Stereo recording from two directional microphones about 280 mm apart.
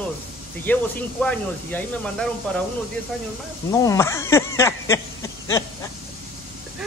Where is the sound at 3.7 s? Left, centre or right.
Centre.